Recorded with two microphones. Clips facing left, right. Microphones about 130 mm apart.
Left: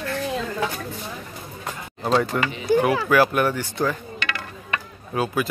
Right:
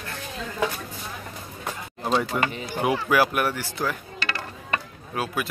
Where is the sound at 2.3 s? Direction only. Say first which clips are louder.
Left 6 dB; 10° right (ahead or behind).